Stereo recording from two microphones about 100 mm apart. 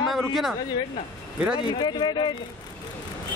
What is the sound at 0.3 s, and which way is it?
Speech, 5° right (ahead or behind).